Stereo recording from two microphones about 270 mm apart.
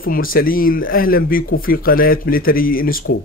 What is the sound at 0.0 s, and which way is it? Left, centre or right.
Speech, left.